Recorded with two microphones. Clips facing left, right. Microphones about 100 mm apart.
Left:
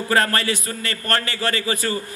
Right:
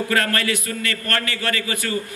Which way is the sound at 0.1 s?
30° left (ahead or behind).